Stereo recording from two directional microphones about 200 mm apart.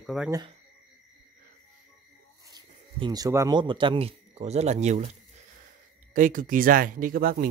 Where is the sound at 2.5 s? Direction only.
20° right (ahead or behind).